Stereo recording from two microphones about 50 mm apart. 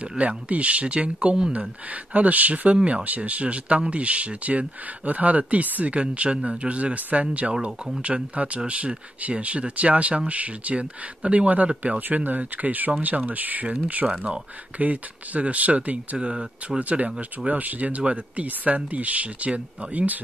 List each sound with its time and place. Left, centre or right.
0.2 s speech: right
14.0 s speech: right